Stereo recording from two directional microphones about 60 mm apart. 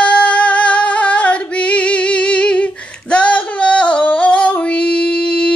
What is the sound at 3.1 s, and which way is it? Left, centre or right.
Female singing, centre.